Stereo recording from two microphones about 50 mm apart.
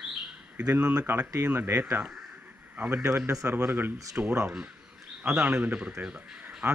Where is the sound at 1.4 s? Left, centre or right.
Right.